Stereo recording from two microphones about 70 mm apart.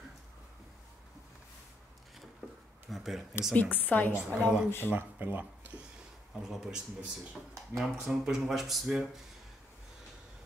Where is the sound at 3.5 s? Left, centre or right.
Left.